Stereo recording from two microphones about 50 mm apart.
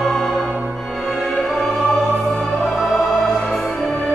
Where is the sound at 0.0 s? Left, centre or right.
Centre.